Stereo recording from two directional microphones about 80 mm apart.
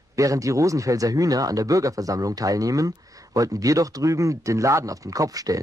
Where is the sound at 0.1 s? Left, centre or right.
Right.